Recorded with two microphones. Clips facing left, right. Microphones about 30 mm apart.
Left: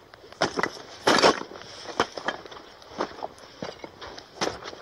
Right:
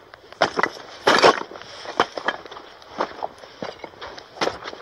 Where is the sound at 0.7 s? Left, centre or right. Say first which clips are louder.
Right 4 dB; centre.